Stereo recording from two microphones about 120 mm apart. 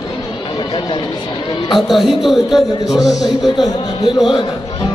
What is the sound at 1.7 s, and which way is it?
Speech, centre (ahead or behind).